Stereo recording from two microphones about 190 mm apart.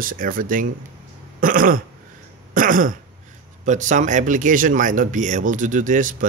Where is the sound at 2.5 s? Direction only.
45° right (ahead or behind).